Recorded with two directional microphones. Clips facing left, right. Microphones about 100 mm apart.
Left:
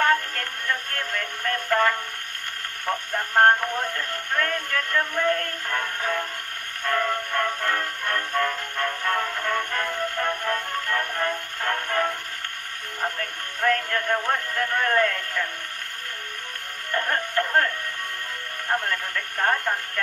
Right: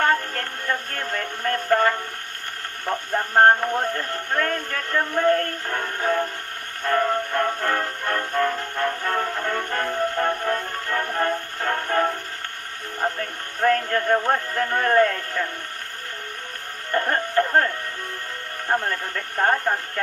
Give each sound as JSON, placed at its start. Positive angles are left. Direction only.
{"t": 0.0, "sound": "music", "side_deg": -30}
{"t": 3.1, "sound": "radio", "side_deg": -30}
{"t": 6.8, "sound": "music", "side_deg": -30}
{"t": 13.6, "sound": "a sound", "side_deg": -30}
{"t": 16.9, "sound": "music", "side_deg": -30}
{"t": 18.7, "sound": "speech", "side_deg": -30}